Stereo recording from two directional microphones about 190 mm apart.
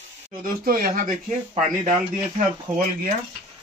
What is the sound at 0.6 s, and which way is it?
Speech, 50° right (ahead or behind).